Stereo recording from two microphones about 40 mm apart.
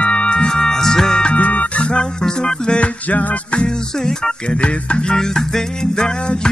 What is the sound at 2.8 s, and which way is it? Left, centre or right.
Music, left.